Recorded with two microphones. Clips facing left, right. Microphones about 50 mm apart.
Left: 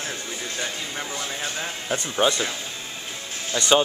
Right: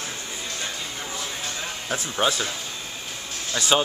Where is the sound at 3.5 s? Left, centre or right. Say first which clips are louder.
Left 2 dB; centre.